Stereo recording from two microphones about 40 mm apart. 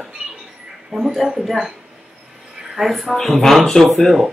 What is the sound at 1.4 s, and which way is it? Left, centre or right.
Speech, centre.